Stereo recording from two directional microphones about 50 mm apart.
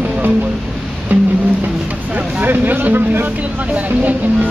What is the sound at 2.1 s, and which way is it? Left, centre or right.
Vehicle, right.